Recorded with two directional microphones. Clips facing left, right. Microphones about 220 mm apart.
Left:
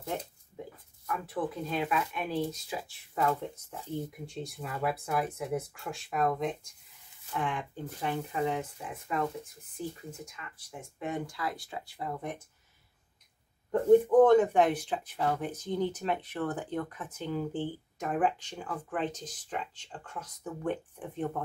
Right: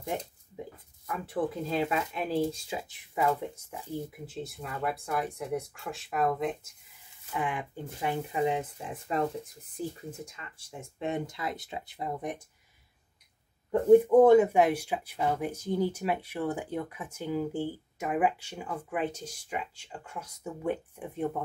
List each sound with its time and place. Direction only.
1.0 s speech: 25° right (ahead or behind)
3.2 s speech: 10° right (ahead or behind)
13.7 s speech: 10° right (ahead or behind)